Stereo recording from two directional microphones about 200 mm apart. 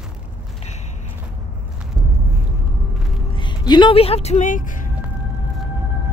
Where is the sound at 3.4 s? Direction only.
20° left (ahead or behind); by 4.8 s 40° left (ahead or behind).